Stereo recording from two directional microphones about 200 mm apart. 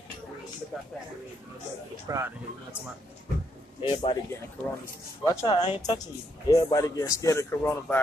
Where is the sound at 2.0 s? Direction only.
15° right (ahead or behind).